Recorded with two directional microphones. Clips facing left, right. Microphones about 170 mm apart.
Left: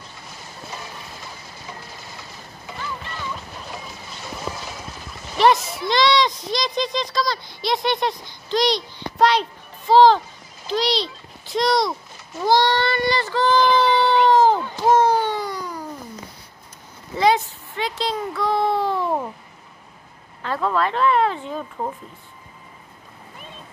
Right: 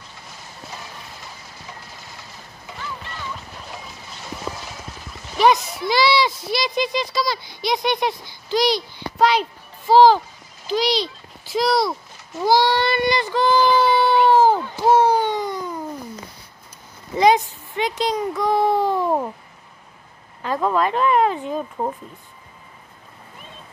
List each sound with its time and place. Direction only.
5.4 s speech: 5° right (ahead or behind)
12.4 s child singing: 5° right (ahead or behind); by 15.8 s 25° right (ahead or behind)
17.2 s a child's voice: 15° right (ahead or behind)
20.4 s speech: 15° right (ahead or behind)